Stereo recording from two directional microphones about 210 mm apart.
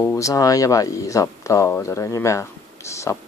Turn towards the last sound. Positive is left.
turn(degrees=15)  # may be behind; listen again after turning